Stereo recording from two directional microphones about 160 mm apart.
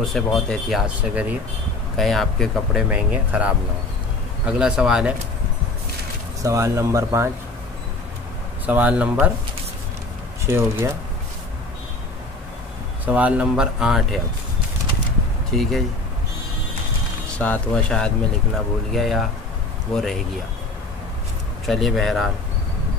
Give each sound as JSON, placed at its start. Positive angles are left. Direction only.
{"t": 0.0, "sound": "speech", "side_deg": 0}
{"t": 2.9, "sound": "speech", "side_deg": -10}
{"t": 6.4, "sound": "speech", "side_deg": -20}
{"t": 8.6, "sound": "speech", "side_deg": -10}
{"t": 10.4, "sound": "speech", "side_deg": -15}
{"t": 13.0, "sound": "speech", "side_deg": -10}
{"t": 15.5, "sound": "speech", "side_deg": 0}
{"t": 17.4, "sound": "speech", "side_deg": 10}
{"t": 21.6, "sound": "speech", "side_deg": 0}